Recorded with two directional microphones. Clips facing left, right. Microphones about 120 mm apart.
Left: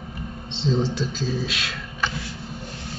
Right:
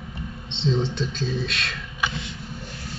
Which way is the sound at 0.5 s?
Centre (ahead or behind).